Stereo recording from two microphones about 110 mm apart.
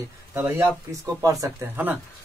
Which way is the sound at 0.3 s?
25° right (ahead or behind).